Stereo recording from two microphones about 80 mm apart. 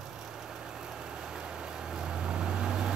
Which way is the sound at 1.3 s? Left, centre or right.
Centre.